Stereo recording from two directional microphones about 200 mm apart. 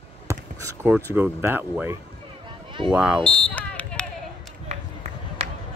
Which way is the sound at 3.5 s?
5° left (ahead or behind).